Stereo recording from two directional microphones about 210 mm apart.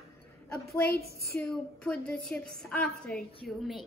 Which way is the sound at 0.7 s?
50° left (ahead or behind).